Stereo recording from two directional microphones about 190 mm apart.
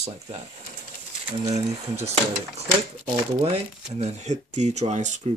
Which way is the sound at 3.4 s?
35° right (ahead or behind).